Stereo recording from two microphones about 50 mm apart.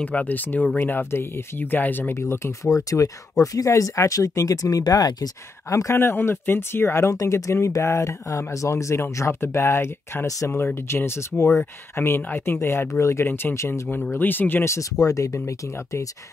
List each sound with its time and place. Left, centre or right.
0.0 s speech: left
2.1 s speech: left
3.3 s speech: left
5.7 s speech: left
5.9 s speech: left
7.6 s speech: left
9.3 s speech: left
10.5 s speech: left
11.9 s speech: left
13.6 s speech: left
14.1 s speech: left
14.6 s speech: left